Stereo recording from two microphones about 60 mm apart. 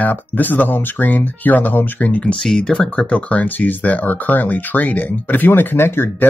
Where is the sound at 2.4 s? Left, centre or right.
Centre.